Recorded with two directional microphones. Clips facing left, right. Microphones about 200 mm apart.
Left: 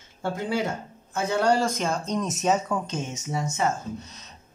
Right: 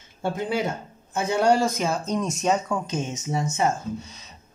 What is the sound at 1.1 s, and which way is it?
Speech, 15° right (ahead or behind).